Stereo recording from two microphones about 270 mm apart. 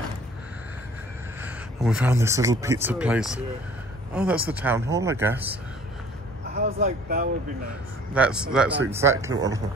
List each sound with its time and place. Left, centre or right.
1.4 s speech: centre
6.5 s speech: right
8.1 s speech: centre